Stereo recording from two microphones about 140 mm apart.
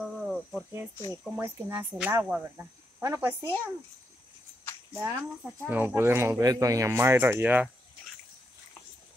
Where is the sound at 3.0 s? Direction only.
20° right (ahead or behind).